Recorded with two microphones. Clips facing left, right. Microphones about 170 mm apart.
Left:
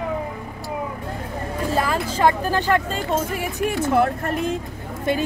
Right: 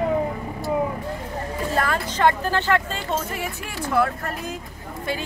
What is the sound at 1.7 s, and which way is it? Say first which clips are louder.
Speech: left 2 dB; 5° left (ahead or behind).